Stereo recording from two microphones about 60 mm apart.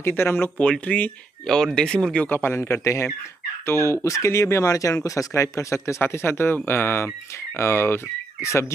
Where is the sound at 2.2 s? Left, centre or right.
Left.